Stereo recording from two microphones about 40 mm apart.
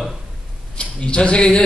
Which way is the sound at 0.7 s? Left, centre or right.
Left.